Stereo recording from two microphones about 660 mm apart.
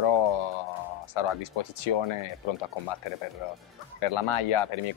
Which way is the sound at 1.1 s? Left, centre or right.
Left.